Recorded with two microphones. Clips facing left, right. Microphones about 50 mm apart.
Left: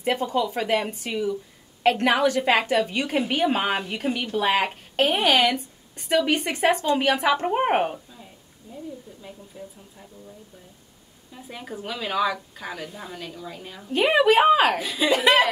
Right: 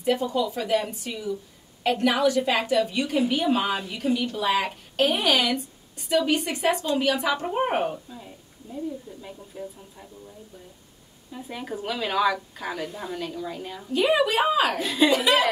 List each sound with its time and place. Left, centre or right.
0.0 s a woman's voice: left
9.2 s a woman's voice: centre
11.3 s a woman's voice: centre
13.8 s a woman's voice: left
14.8 s a woman's voice: centre
15.0 s a woman's voice: left